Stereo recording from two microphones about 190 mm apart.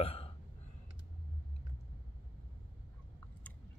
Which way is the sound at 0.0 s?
30° left (ahead or behind).